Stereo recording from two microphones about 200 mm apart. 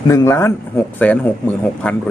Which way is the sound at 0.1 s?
15° left (ahead or behind).